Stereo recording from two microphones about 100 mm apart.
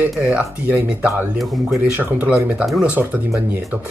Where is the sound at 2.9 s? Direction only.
20° right (ahead or behind).